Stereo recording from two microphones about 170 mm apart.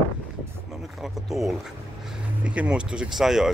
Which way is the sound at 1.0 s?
Centre (ahead or behind).